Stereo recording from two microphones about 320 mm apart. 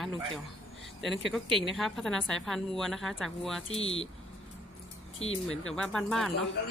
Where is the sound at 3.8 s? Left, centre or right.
Centre.